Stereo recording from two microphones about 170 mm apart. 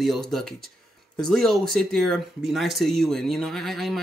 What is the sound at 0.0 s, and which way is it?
Speech, centre (ahead or behind).